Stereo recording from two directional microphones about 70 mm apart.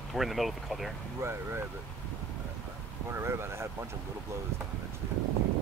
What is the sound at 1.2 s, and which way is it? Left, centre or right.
Speech, right.